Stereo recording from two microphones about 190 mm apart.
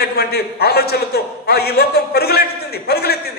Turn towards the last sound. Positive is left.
turn(degrees=55)  # may be behind; listen again after turning